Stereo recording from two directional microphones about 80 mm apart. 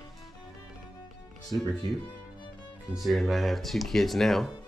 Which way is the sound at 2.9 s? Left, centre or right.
Centre.